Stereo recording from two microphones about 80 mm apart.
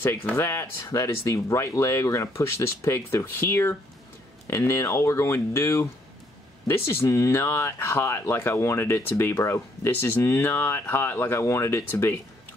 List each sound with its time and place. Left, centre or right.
0.0 s speech: left